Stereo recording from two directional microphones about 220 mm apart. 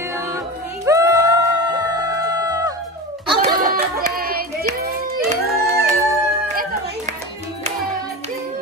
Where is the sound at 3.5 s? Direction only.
45° right (ahead or behind).